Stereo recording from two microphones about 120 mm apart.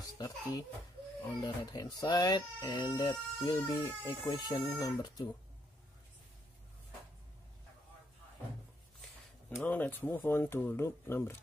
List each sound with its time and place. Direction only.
0.0 s a child's voice: 30° left (ahead or behind)
9.6 s speech: 15° left (ahead or behind)